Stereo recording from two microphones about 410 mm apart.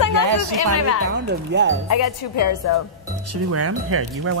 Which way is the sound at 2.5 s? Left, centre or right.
Left.